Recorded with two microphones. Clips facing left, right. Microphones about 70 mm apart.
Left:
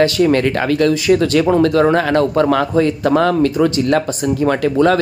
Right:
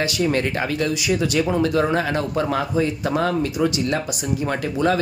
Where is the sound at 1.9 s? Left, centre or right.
Left.